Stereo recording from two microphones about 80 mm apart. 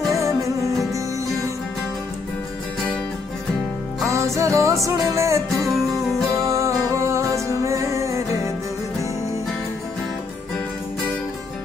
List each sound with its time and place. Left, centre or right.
0.1 s music: right
4.0 s music: right
5.7 s music: centre
6.4 s music: right